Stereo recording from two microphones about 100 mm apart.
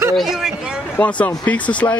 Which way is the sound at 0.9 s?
15° left (ahead or behind).